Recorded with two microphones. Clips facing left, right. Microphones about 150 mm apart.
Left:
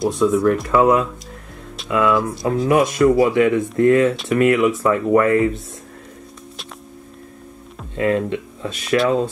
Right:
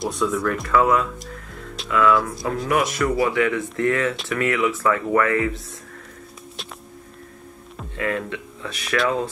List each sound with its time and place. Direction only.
0.2 s speech: 25° left (ahead or behind)
8.0 s speech: 25° left (ahead or behind)